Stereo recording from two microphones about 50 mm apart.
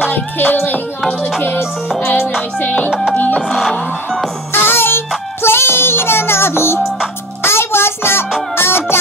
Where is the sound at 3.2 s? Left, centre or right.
Left.